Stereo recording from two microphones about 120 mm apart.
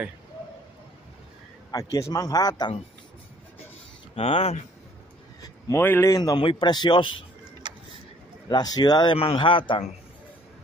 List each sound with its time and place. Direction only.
1.7 s a man's voice: 30° left (ahead or behind)
4.1 s speech: 55° left (ahead or behind)
5.4 s a man's voice: 25° left (ahead or behind); by 7.1 s 40° left (ahead or behind)
7.6 s vehicle: 40° right (ahead or behind)
8.5 s a man's voice: 35° left (ahead or behind)
9.2 s a man's voice: 50° left (ahead or behind)